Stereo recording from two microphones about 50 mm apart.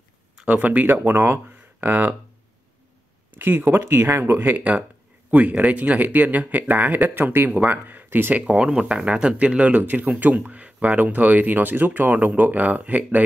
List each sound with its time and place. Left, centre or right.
0.5 s speech: right
3.3 s speech: right
3.6 s speech: right
4.1 s speech: right
8.5 s speech: centre; by 13.2 s right